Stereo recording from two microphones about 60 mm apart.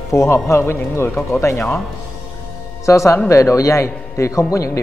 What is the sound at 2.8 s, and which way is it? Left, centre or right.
A man's voice, left.